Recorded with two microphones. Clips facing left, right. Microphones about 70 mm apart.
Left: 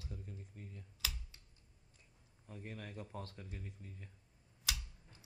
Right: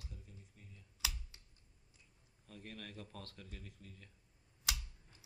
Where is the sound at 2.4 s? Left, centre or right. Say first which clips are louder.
Left 2 dB; centre.